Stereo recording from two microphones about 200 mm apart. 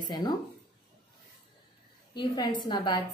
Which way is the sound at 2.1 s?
20° left (ahead or behind).